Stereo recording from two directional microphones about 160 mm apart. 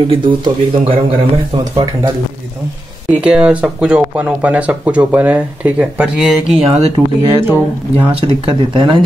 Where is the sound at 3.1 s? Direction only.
5° right (ahead or behind).